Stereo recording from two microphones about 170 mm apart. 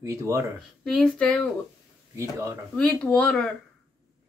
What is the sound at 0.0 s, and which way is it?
Speech, 15° right (ahead or behind).